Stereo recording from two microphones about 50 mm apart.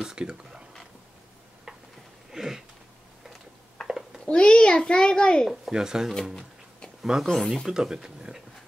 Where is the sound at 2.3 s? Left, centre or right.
Centre.